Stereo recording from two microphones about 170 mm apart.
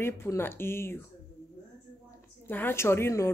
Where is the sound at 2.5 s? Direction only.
10° left (ahead or behind).